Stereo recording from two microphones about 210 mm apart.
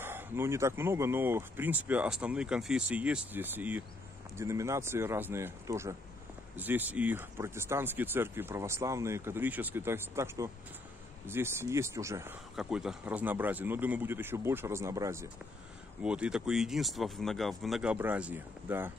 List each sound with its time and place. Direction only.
0.0 s speech: 10° right (ahead or behind)